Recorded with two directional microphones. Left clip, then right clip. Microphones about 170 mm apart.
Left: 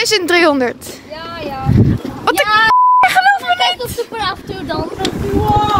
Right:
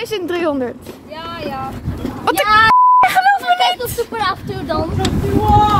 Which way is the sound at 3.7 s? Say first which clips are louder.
Even; 30° right (ahead or behind).